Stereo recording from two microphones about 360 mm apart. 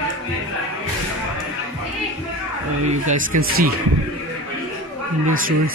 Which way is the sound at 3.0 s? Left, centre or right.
Right.